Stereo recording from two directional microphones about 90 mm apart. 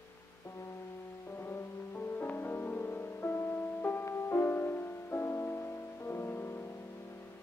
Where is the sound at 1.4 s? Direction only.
25° left (ahead or behind).